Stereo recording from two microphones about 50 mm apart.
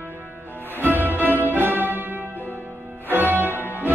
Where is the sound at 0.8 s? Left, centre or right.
Right.